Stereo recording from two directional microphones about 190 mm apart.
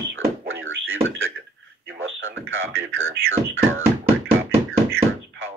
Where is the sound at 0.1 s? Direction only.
90° right.